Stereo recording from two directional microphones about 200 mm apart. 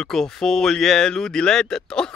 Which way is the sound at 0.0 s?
Centre (ahead or behind).